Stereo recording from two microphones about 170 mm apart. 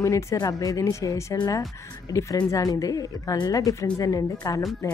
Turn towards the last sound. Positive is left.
turn(degrees=20)  # may be behind; listen again after turning